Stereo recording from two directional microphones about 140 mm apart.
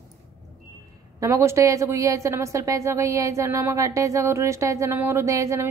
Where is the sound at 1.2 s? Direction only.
20° right (ahead or behind).